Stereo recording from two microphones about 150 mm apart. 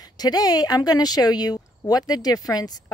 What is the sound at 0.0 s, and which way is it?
Speech, 25° left (ahead or behind).